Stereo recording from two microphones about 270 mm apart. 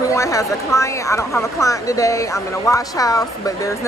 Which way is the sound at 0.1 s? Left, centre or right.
Centre.